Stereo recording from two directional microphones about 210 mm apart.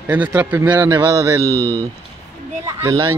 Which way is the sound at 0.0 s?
10° right (ahead or behind).